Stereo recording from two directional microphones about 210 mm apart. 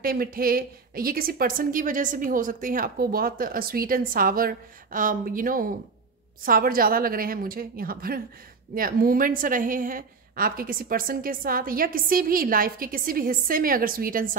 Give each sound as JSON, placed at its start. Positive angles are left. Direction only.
{"t": 0.0, "sound": "a woman's voice", "side_deg": -45}